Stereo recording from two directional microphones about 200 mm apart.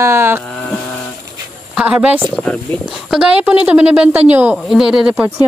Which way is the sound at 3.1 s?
5° right (ahead or behind).